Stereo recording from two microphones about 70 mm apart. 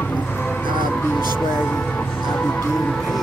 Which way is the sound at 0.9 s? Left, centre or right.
Left.